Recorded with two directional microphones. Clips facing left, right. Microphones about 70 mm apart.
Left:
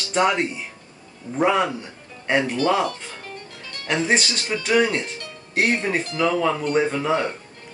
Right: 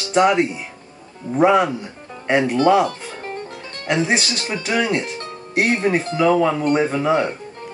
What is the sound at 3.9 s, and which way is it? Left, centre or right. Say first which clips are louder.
Speech: right 2 dB; centre.